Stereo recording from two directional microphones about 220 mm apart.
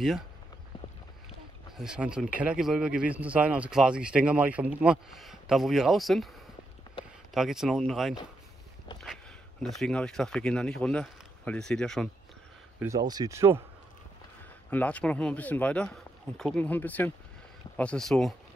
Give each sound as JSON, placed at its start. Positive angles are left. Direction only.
{"t": 1.8, "sound": "speech", "side_deg": -5}
{"t": 7.0, "sound": "a sound", "side_deg": 20}
{"t": 7.3, "sound": "speech", "side_deg": 0}
{"t": 12.7, "sound": "speech", "side_deg": -15}
{"t": 14.7, "sound": "speech", "side_deg": 5}